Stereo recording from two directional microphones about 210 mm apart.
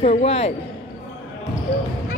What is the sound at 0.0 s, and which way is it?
Speech, 30° left (ahead or behind).